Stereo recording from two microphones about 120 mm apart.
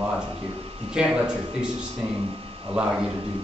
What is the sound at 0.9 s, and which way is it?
Speech, 10° right (ahead or behind).